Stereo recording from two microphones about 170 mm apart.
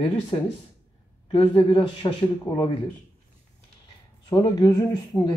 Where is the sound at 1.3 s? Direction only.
25° left (ahead or behind).